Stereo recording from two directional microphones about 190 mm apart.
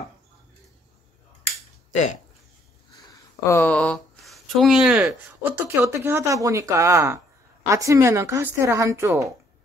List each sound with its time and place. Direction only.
1.9 s speech: 40° left (ahead or behind)
3.1 s a sound: 15° left (ahead or behind); by 5.5 s 5° right (ahead or behind)
5.8 s a woman's voice: 15° right (ahead or behind)